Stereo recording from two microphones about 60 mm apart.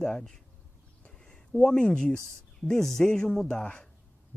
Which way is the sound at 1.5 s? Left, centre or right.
Centre.